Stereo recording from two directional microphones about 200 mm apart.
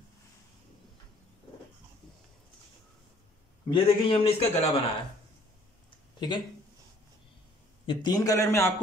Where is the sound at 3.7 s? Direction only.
30° left (ahead or behind).